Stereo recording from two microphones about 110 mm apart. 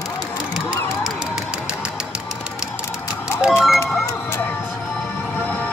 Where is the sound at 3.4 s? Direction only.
5° right (ahead or behind).